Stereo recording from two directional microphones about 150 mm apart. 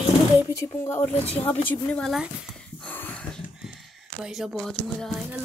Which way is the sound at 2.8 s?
10° left (ahead or behind).